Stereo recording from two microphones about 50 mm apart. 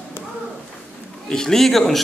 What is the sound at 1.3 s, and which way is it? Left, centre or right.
Speech, centre.